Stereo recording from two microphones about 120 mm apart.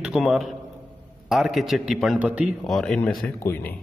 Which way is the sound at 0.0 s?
5° right (ahead or behind).